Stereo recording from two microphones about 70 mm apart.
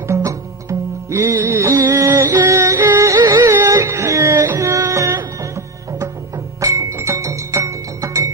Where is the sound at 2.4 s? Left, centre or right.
Right.